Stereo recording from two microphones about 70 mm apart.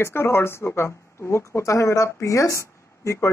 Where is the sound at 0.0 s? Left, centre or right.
Left.